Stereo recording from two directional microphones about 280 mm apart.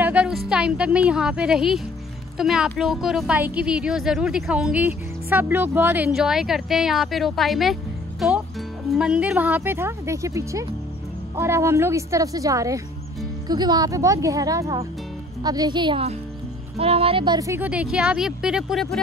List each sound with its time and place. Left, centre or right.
0.0 s a woman's voice: centre